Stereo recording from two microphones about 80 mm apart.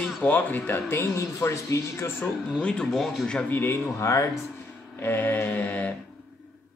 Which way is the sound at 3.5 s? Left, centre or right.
Left.